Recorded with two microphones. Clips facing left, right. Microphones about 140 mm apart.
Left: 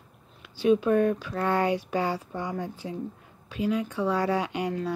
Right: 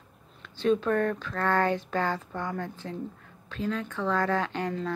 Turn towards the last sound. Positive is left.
turn(degrees=10)  # may be behind; listen again after turning